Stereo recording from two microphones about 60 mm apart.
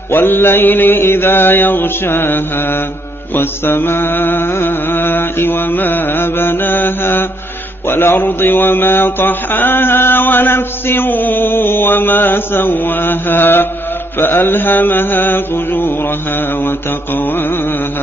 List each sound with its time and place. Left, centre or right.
0.1 s mantra: left